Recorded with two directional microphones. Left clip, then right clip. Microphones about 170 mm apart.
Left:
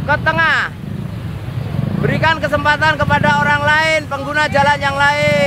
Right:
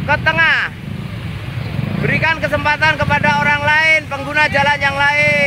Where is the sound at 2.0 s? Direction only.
10° left (ahead or behind).